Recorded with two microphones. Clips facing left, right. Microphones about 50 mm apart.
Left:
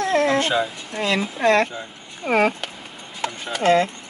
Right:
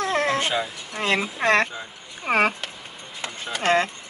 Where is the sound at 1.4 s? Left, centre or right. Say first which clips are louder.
Left 4 dB; right.